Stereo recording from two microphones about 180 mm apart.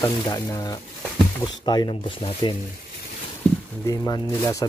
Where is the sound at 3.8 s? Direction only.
20° left (ahead or behind).